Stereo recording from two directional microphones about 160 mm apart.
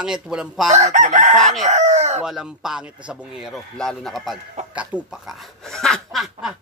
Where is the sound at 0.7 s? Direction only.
50° right (ahead or behind).